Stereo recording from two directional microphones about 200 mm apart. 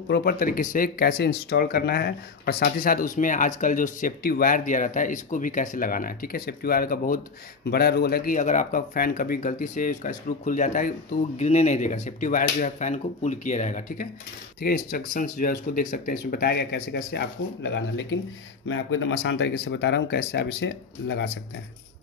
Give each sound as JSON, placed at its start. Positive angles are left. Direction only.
{"t": 0.1, "sound": "speech", "side_deg": 50}
{"t": 18.7, "sound": "speech", "side_deg": 75}